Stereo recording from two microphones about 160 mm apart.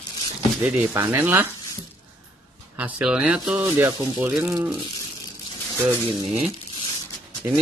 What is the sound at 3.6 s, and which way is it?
Speech, 15° right (ahead or behind).